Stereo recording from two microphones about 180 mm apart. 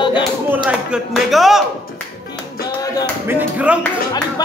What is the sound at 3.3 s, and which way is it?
Speech, 10° right (ahead or behind).